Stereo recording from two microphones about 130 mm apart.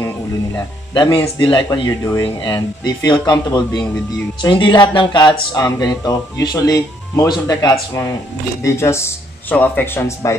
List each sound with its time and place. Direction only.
0.9 s speech: 35° left (ahead or behind); by 10.3 s 20° left (ahead or behind)